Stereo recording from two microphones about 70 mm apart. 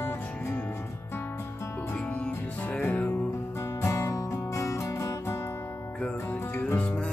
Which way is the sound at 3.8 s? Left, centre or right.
Left.